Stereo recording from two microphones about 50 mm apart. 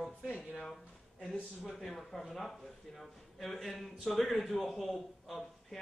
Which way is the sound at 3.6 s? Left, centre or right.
Centre.